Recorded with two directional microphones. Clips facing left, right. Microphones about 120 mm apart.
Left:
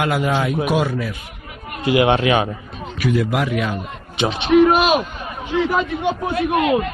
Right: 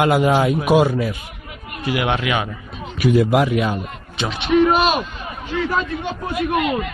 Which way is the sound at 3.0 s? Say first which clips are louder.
Right 4 dB; 20° right (ahead or behind).